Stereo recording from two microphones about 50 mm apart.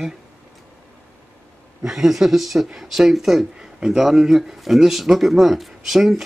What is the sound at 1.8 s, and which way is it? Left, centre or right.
A man's voice, centre.